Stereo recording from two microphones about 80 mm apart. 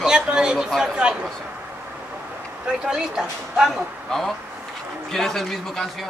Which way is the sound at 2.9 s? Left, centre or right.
Centre.